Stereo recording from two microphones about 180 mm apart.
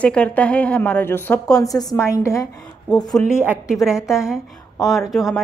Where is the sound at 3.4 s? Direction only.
5° right (ahead or behind).